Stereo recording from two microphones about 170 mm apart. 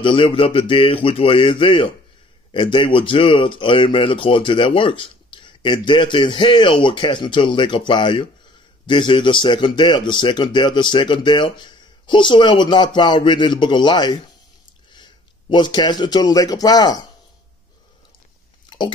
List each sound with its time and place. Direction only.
0.0 s speech: 30° left (ahead or behind)
15.5 s speech: 25° left (ahead or behind)
18.7 s a sound: 30° left (ahead or behind)